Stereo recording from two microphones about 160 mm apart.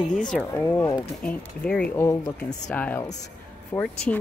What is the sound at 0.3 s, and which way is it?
Speech, 10° left (ahead or behind).